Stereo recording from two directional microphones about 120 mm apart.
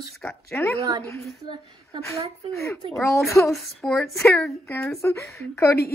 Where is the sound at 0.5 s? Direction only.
20° left (ahead or behind).